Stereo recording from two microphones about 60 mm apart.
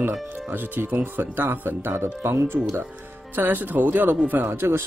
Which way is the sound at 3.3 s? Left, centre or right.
Right.